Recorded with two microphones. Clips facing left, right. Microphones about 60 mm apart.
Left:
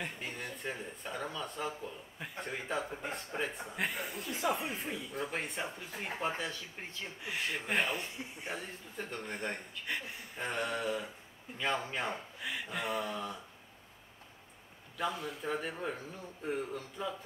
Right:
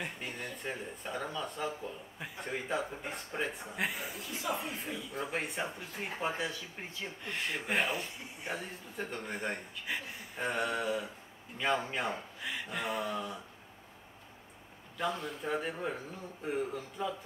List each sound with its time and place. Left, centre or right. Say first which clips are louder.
0.0 s speech: right 1 dB; centre
4.2 s speech: left 4 dB; left
5.1 s speech: right 3 dB; centre
15.0 s speech: right 1 dB; centre